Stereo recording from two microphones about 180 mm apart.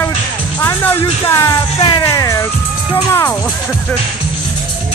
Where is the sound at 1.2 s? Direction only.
15° left (ahead or behind).